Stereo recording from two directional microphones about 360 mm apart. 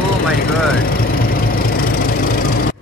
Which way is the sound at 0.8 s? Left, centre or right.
Left.